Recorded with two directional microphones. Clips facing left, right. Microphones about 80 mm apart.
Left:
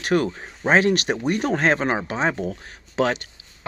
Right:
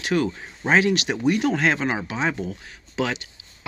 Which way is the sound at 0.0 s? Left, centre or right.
Left.